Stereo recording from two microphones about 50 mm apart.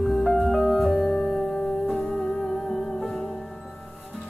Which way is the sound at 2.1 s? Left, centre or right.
Centre.